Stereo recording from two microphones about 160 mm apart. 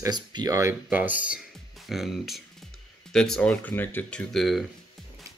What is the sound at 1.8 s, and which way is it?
Speech, centre (ahead or behind).